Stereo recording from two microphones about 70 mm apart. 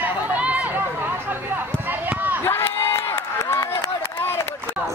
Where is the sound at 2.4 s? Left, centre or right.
Left.